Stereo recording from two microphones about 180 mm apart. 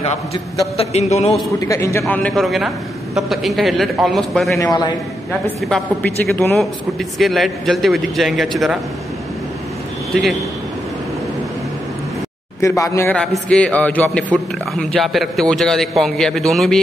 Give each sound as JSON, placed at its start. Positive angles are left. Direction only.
{"t": 0.7, "sound": "a sound", "side_deg": 35}
{"t": 1.6, "sound": "a man's voice", "side_deg": 15}
{"t": 4.6, "sound": "a man's voice", "side_deg": 20}
{"t": 5.7, "sound": "a man's voice", "side_deg": 10}
{"t": 12.5, "sound": "speech", "side_deg": 15}